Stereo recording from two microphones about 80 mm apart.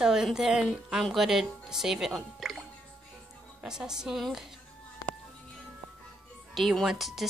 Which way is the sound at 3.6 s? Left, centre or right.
Centre.